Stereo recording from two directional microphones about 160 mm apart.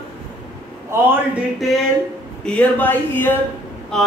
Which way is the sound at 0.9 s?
15° right (ahead or behind).